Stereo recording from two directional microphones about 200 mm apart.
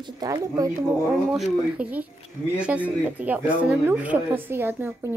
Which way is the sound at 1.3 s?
5° right (ahead or behind).